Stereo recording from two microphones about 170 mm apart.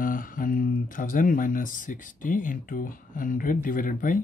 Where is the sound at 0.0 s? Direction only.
55° left (ahead or behind).